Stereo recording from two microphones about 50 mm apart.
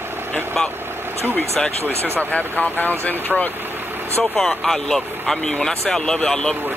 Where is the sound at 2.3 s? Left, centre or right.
Left.